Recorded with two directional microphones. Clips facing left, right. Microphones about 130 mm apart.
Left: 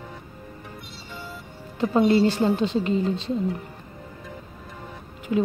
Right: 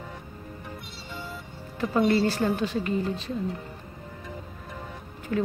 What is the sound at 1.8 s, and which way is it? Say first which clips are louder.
A woman's voice: left 4 dB; 25° left (ahead or behind).